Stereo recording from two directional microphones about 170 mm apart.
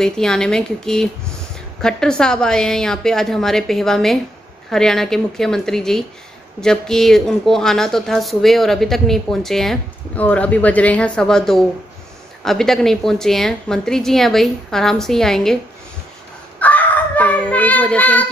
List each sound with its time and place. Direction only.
0.0 s speech: 5° left (ahead or behind)
16.5 s child singing: 10° left (ahead or behind)